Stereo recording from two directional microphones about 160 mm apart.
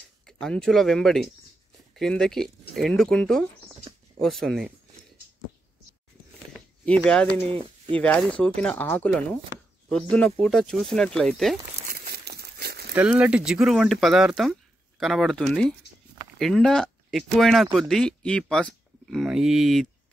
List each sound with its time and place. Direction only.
0.3 s speech: 5° left (ahead or behind)
6.9 s speech: 5° left (ahead or behind)
11.9 s crumpling: 70° right (ahead or behind)
12.9 s speech: 5° right (ahead or behind)